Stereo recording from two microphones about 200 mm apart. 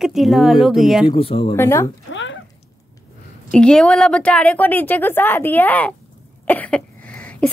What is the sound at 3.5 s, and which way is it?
A woman's voice, 5° left (ahead or behind).